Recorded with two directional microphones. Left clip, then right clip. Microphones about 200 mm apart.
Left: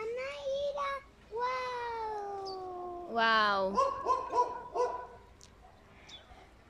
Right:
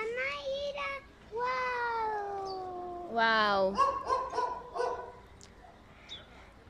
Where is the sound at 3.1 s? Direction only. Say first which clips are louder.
Right 1 dB; centre (ahead or behind).